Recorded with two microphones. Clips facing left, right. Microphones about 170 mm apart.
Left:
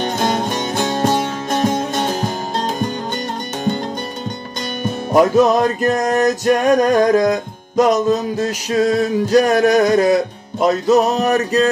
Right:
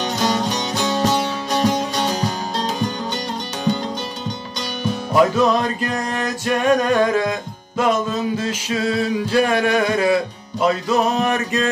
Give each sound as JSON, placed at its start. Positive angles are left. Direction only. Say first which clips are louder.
{"t": 0.0, "sound": "music", "louder": "left 2 dB", "side_deg": 55}
{"t": 4.8, "sound": "music", "louder": "left 3 dB", "side_deg": 45}